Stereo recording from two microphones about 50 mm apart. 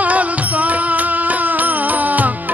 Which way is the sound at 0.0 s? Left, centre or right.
Right.